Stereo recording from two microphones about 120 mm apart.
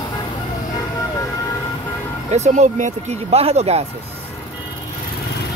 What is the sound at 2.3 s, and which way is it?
Speech, 70° right (ahead or behind).